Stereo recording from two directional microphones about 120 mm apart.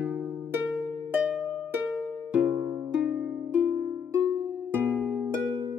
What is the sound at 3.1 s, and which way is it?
Harp, 15° right (ahead or behind).